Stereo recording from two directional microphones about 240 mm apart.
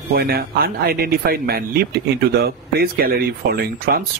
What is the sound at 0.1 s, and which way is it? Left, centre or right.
Speech, right.